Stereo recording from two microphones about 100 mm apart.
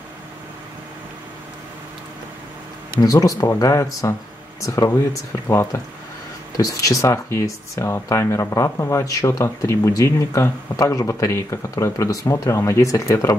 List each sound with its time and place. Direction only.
3.0 s speech: 35° left (ahead or behind)